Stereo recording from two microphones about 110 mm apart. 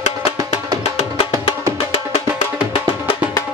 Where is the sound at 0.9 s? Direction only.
60° left (ahead or behind).